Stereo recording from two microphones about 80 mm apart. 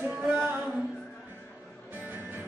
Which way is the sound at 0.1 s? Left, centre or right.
Centre.